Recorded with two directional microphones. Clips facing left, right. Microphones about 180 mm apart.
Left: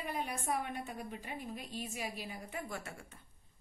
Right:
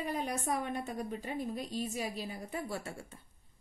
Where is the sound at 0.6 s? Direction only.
45° right (ahead or behind).